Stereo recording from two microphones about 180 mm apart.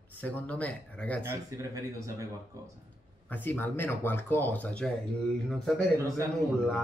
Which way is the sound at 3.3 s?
10° left (ahead or behind).